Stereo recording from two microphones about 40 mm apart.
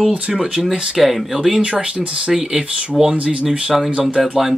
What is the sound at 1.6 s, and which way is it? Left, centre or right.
Speech, right.